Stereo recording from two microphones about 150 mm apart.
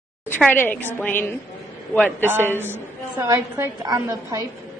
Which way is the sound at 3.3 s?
20° right (ahead or behind).